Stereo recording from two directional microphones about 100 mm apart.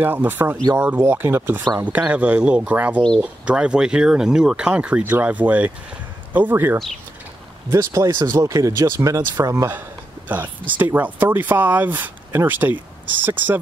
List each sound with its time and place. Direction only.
0.0 s speech: 20° right (ahead or behind)
9.7 s a sound: 20° right (ahead or behind)
11.0 s speech: 20° right (ahead or behind)